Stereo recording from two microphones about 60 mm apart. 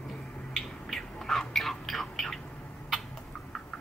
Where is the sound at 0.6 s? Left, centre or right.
Centre.